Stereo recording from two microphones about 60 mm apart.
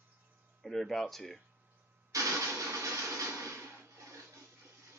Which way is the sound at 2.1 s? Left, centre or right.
Right.